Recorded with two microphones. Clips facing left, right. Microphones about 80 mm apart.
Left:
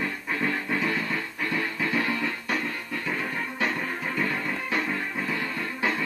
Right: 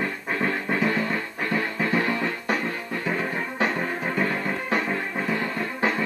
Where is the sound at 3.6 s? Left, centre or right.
Right.